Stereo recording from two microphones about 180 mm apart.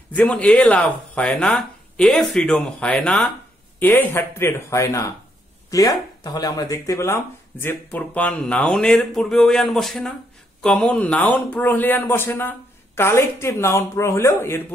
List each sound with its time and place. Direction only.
0.1 s a man's voice: 5° left (ahead or behind)